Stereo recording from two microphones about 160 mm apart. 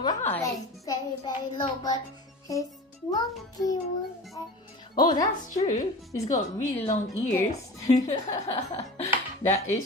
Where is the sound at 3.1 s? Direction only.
25° left (ahead or behind).